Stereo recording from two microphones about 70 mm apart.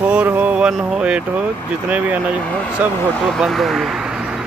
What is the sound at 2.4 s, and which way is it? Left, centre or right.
Speech, centre.